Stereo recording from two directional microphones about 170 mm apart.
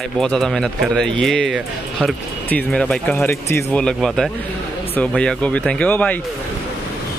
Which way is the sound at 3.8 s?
Centre (ahead or behind).